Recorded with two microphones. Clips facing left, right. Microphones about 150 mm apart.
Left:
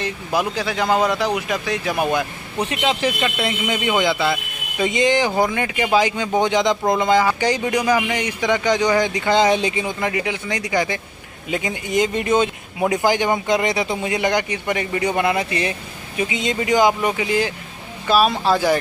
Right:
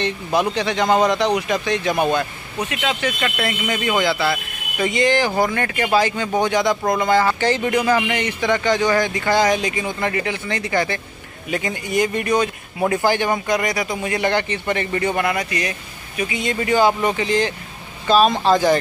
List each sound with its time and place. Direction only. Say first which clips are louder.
0.0 s speech: right 2 dB; 5° left (ahead or behind)
3.2 s speech: left 1 dB; 20° left (ahead or behind)